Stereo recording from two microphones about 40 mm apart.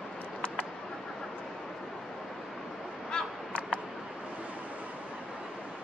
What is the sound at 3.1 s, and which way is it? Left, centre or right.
Crow, left.